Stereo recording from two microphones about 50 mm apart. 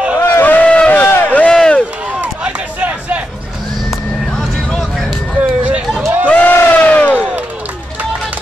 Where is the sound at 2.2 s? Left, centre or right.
Right.